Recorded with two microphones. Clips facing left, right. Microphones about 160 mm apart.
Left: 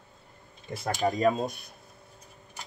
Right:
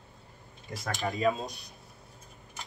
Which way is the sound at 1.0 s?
40° left (ahead or behind).